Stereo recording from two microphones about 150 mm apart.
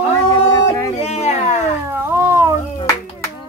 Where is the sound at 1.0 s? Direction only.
45° left (ahead or behind).